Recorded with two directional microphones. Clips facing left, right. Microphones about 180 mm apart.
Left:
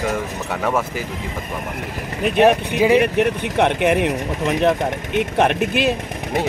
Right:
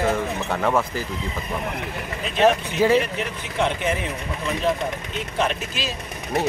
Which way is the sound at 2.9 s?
60° left (ahead or behind).